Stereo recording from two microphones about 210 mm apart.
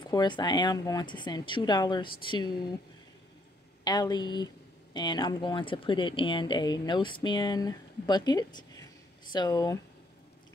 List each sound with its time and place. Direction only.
0.0 s speech: 20° left (ahead or behind)
3.8 s speech: 20° left (ahead or behind)